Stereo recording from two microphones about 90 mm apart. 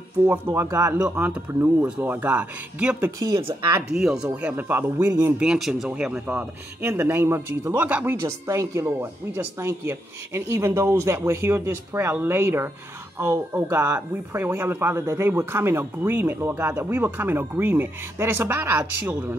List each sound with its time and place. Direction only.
0.3 s speech: 30° right (ahead or behind)
1.1 s speech: 20° right (ahead or behind)
3.2 s speech: 35° right (ahead or behind)
3.9 s speech: 5° right (ahead or behind); by 5.3 s 25° right (ahead or behind)
5.4 s speech: 5° right (ahead or behind)
6.8 s speech: 30° right (ahead or behind)
8.5 s speech: 35° right (ahead or behind)